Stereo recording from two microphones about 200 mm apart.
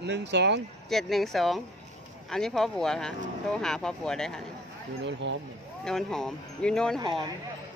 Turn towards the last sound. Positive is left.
turn(degrees=-25)  # may be behind; listen again after turning